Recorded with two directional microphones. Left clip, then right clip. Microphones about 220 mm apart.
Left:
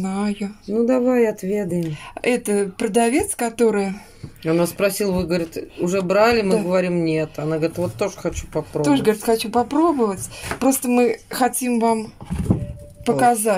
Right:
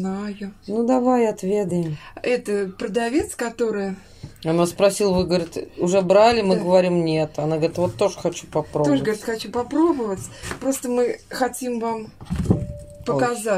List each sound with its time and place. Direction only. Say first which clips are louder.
0.0 s speech: left 4 dB; 45° left (ahead or behind)
0.8 s speech: left 1 dB; centre (ahead or behind)
2.2 s speech: left 2 dB; 45° left (ahead or behind)
4.4 s speech: right 1 dB; 5° right (ahead or behind)
8.8 s speech: left 7 dB; 45° left (ahead or behind)